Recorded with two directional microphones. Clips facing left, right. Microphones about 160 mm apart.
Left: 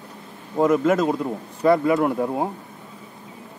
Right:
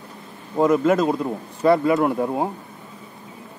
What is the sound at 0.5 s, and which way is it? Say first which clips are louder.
Speech: right 1 dB; 30° right (ahead or behind).